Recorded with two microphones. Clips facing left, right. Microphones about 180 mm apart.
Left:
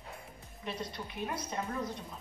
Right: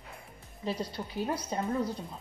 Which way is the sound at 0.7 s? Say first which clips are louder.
Right 5 dB; 30° right (ahead or behind).